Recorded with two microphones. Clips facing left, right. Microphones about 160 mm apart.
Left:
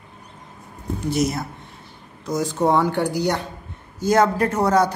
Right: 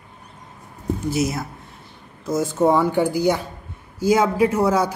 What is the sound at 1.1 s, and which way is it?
A woman's voice, 5° right (ahead or behind).